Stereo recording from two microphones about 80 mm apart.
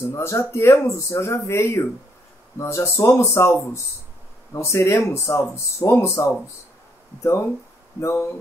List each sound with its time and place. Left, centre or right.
0.0 s speech: left
4.6 s speech: left
8.0 s speech: left